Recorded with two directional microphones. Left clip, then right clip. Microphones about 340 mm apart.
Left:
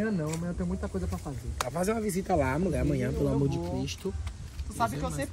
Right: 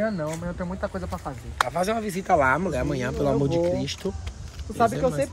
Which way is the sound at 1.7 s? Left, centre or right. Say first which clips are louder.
Right 5 dB; right.